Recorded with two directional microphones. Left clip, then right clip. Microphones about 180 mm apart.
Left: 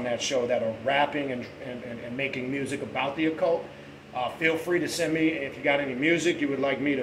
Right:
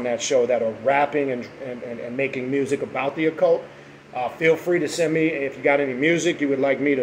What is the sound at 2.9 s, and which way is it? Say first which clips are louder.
Speech: right 2 dB; 15° right (ahead or behind).